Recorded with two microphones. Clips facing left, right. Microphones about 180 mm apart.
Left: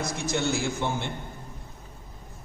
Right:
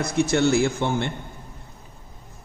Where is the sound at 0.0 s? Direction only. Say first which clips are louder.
Right 8 dB; 60° right (ahead or behind).